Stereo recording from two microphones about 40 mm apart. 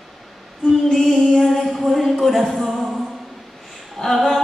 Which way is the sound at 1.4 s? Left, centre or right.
Centre.